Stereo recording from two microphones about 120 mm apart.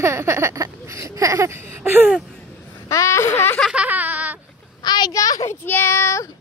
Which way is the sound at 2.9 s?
25° left (ahead or behind).